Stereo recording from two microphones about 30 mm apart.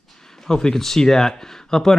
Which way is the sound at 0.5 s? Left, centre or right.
Left.